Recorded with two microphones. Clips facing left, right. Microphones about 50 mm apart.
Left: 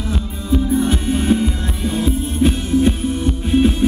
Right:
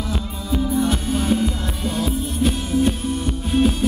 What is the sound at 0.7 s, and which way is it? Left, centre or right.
Music, left.